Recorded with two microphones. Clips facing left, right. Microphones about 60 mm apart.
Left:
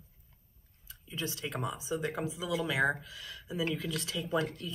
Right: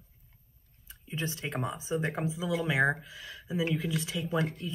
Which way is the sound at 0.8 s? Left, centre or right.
Right.